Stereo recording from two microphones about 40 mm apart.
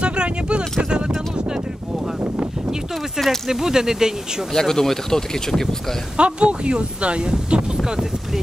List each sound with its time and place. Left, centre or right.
0.0 s a sound: right
2.1 s a sound: right
3.4 s speech: centre
4.5 s speech: centre
6.1 s speech: right
7.7 s speech: centre